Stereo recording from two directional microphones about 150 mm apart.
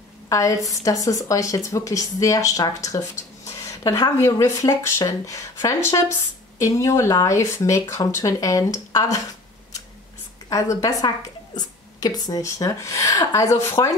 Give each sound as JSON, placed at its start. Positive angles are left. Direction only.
{"t": 0.3, "sound": "a woman's voice", "side_deg": 20}
{"t": 10.5, "sound": "speech", "side_deg": 20}